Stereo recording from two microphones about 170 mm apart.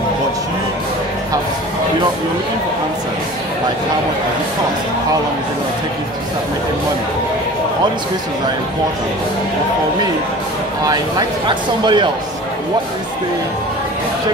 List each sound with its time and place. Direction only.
10.9 s speech: 25° right (ahead or behind)